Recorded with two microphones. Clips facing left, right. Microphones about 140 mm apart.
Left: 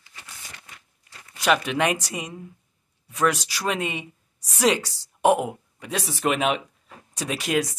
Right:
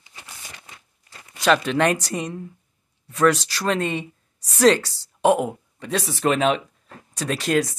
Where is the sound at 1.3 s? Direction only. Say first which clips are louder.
Right 3 dB; 10° left (ahead or behind).